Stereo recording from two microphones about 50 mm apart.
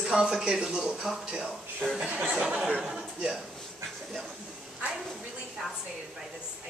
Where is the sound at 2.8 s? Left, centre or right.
Centre.